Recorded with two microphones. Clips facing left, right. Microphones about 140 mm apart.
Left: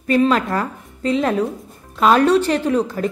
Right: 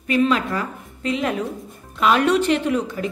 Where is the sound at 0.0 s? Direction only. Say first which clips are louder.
Left 3 dB; 40° left (ahead or behind).